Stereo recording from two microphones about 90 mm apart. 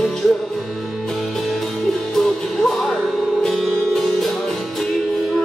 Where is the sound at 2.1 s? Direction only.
5° left (ahead or behind).